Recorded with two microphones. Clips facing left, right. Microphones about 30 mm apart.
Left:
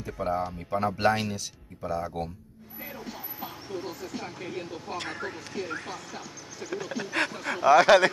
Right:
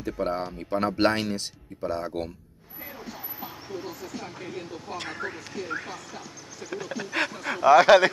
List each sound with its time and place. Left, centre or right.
0.0 s speech: right
0.7 s speech: right
3.1 s speech: centre